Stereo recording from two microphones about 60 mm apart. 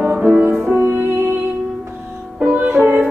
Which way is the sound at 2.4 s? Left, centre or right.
Right.